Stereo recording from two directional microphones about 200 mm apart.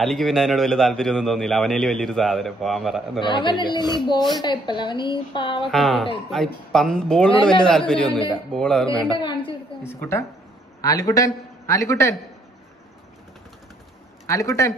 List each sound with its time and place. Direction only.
0.0 s a man's voice: centre (ahead or behind)
3.2 s a woman's voice: 25° left (ahead or behind)
5.7 s a man's voice: centre (ahead or behind)
9.1 s a woman's voice: 25° left (ahead or behind)
9.8 s a woman's voice: 10° left (ahead or behind)
14.2 s speech: 15° left (ahead or behind)